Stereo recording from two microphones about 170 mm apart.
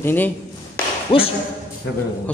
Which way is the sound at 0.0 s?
10° left (ahead or behind).